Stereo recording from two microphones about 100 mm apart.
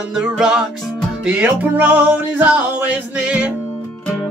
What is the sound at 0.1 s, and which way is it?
Music, 10° right (ahead or behind).